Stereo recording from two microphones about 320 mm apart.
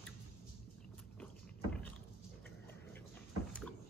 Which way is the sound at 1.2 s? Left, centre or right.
Centre.